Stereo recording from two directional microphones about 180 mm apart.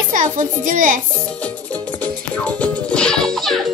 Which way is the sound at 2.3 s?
10° left (ahead or behind).